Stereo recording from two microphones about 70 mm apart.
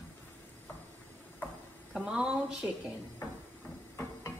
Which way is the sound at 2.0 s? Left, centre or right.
Centre.